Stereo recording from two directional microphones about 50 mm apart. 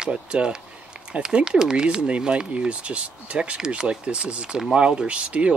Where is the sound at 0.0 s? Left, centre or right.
Centre.